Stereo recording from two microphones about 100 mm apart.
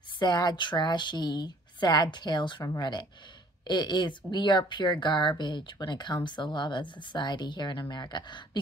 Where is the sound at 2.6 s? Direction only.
40° left (ahead or behind).